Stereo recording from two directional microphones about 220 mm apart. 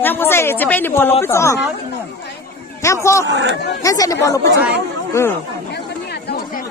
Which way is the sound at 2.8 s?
15° left (ahead or behind).